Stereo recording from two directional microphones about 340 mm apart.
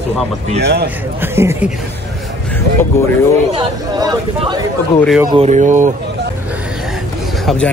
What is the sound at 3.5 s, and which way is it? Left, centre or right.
Speech, centre.